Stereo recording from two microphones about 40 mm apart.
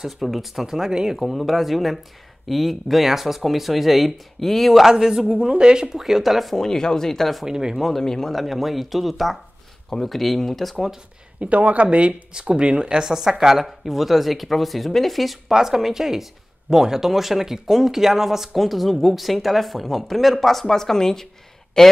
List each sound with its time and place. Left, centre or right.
0.2 s speech: centre
1.2 s speech: centre
4.8 s speech: centre
5.9 s speech: centre
6.5 s speech: centre
7.4 s speech: centre
8.0 s speech: centre
11.3 s speech: right; by 21.9 s centre